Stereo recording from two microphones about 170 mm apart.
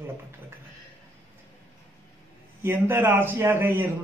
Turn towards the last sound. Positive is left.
turn(degrees=-10)  # may be behind; listen again after turning